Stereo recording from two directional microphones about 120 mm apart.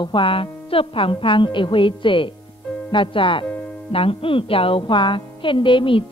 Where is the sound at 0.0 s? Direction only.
45° left (ahead or behind).